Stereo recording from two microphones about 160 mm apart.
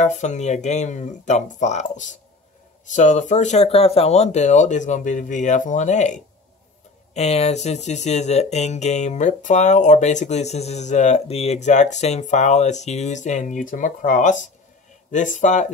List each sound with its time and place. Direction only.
0.0 s speech: 50° left (ahead or behind)